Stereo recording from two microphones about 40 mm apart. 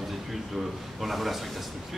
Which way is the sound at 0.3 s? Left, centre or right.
Centre.